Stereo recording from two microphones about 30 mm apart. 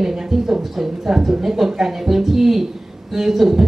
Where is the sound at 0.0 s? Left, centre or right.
Centre.